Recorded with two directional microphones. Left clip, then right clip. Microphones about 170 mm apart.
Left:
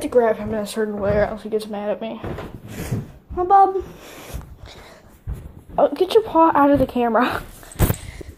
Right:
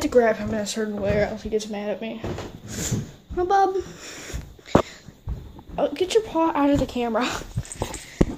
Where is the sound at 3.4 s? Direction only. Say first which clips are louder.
Left 6 dB; 5° right (ahead or behind).